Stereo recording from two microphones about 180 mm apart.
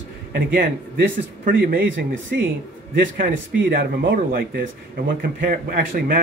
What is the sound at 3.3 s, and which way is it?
A man's voice, 75° right (ahead or behind).